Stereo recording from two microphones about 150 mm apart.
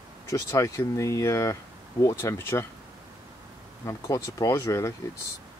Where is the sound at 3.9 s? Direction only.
20° left (ahead or behind).